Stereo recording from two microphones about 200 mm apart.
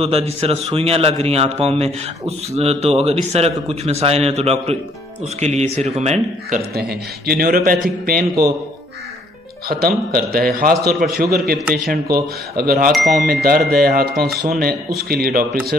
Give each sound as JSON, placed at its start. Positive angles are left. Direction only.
{"t": 0.0, "sound": "a man's voice", "side_deg": -30}
{"t": 6.7, "sound": "a man's voice", "side_deg": -50}
{"t": 9.7, "sound": "a man's voice", "side_deg": -50}
{"t": 12.9, "sound": "speech", "side_deg": 0}
{"t": 13.2, "sound": "a man's voice", "side_deg": -50}